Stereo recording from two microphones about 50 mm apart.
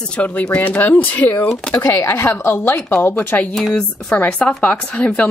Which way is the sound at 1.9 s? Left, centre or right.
Left.